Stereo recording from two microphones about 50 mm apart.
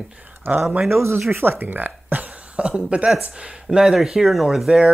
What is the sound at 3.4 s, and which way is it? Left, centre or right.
Speech, centre.